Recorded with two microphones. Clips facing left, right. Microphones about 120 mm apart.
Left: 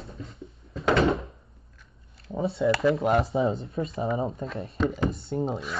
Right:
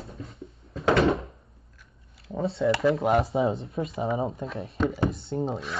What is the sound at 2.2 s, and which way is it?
Speech, centre (ahead or behind).